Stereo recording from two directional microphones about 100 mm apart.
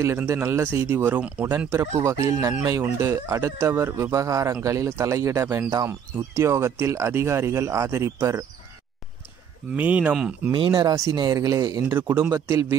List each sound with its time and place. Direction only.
0.0 s a man's voice: 25° right (ahead or behind)
9.8 s speech: 15° right (ahead or behind)
10.5 s speech: 50° right (ahead or behind)
11.0 s a man's voice: 40° right (ahead or behind)
11.9 s speech: 20° right (ahead or behind)
12.3 s a man's voice: 35° right (ahead or behind)